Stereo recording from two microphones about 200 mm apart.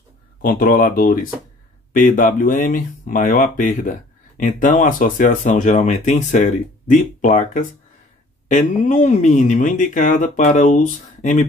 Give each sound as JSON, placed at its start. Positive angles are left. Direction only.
{"t": 0.4, "sound": "speech", "side_deg": 45}